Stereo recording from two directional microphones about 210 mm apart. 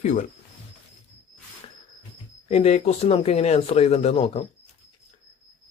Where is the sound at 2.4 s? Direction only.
30° left (ahead or behind).